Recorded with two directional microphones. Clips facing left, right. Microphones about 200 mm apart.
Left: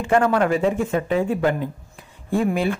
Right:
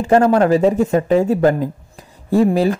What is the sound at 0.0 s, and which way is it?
Speech, 40° right (ahead or behind).